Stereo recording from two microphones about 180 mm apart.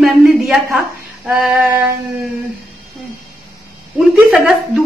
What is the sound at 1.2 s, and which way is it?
Female singing, 5° right (ahead or behind).